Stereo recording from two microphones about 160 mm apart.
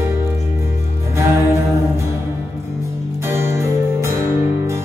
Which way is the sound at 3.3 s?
15° right (ahead or behind).